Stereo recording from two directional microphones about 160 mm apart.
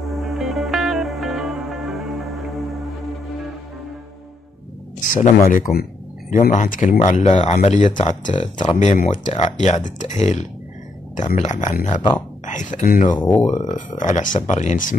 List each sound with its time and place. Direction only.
0.0 s music: centre (ahead or behind)
5.0 s a sound: 55° left (ahead or behind)
5.5 s speech: 65° left (ahead or behind)
6.3 s speech: 50° left (ahead or behind)